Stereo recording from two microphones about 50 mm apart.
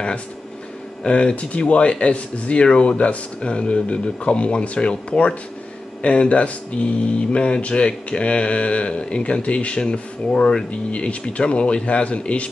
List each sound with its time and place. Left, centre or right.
1.0 s speech: left